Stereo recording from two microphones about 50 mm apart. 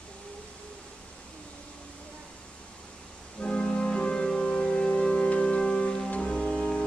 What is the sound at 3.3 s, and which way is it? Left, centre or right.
Organ, centre.